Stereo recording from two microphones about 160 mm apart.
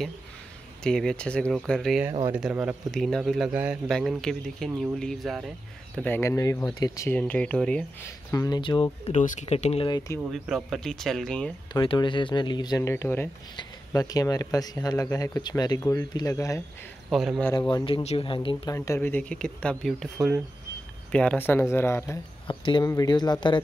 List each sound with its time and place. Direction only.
0.8 s speech: 5° left (ahead or behind)
2.2 s speech: 10° right (ahead or behind)
5.9 s speech: 10° left (ahead or behind)
7.2 s speech: 10° left (ahead or behind)
8.3 s speech: 25° left (ahead or behind)
9.0 s speech: 45° left (ahead or behind)
9.8 s speech: 25° left (ahead or behind)
10.4 s speech: centre (ahead or behind)
11.7 s speech: 30° left (ahead or behind)
17.1 s speech: centre (ahead or behind)
17.6 s speech: 30° left (ahead or behind)
18.8 s speech: 15° left (ahead or behind)
22.5 s speech: 30° left (ahead or behind)